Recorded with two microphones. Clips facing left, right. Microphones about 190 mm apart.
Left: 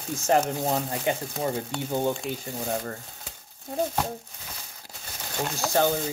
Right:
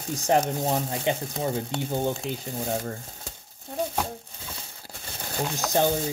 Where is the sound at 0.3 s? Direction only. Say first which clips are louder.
Even; 15° right (ahead or behind).